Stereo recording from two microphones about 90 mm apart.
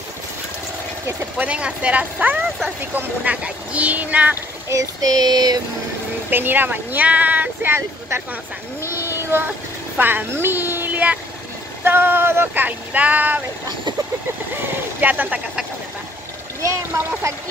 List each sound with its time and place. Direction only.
1.4 s speech: 15° right (ahead or behind)
4.6 s female singing: 40° right (ahead or behind)
6.3 s speech: 20° right (ahead or behind)
8.8 s child singing: 25° right (ahead or behind)
9.9 s speech: 20° right (ahead or behind)
14.5 s speech: 20° right (ahead or behind)
16.6 s speech: 30° right (ahead or behind)